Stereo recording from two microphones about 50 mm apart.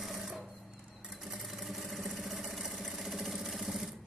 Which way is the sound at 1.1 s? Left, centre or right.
Centre.